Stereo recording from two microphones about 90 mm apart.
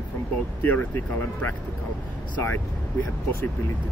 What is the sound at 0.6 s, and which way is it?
Speech, 20° left (ahead or behind).